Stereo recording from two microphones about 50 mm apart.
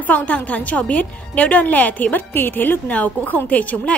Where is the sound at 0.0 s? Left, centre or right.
Left.